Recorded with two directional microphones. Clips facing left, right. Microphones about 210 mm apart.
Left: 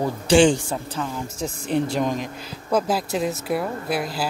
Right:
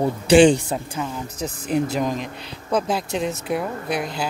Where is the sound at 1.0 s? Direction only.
5° right (ahead or behind).